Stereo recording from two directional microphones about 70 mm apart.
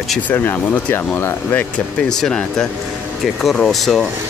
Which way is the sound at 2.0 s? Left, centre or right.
Centre.